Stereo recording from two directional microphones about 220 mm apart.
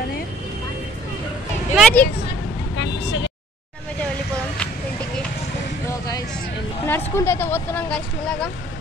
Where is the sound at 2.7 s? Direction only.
55° left (ahead or behind).